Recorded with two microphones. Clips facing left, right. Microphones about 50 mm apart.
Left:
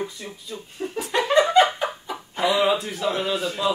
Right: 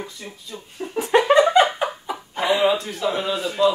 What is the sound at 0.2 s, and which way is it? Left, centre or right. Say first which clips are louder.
Speech: even; centre.